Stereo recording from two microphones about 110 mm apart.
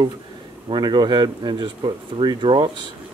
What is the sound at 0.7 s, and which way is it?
Speech, 40° right (ahead or behind).